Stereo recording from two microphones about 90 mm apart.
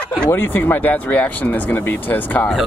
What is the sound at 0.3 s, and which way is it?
Speech, 25° left (ahead or behind).